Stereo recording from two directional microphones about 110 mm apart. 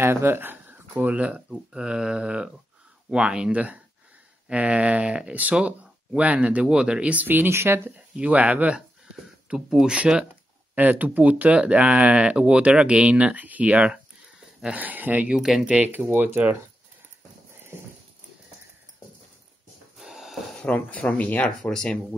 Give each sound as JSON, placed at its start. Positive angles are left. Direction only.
{"t": 0.0, "sound": "speech", "side_deg": -20}
{"t": 15.3, "sound": "speech", "side_deg": -5}
{"t": 20.0, "sound": "a sound", "side_deg": 0}
{"t": 20.5, "sound": "speech", "side_deg": 10}